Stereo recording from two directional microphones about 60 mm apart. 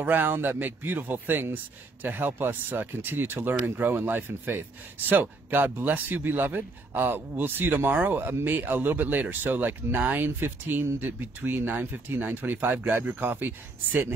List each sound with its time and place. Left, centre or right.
0.0 s a man's voice: right